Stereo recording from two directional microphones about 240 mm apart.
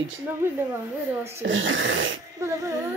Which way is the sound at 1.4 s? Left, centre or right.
Right.